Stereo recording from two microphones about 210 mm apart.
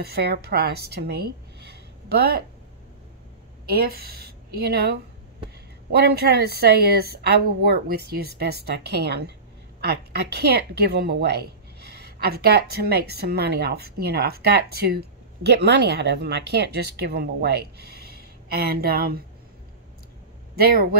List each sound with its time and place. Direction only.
0.0 s speech: 50° right (ahead or behind)
3.7 s speech: 45° right (ahead or behind)
20.5 s speech: 45° right (ahead or behind)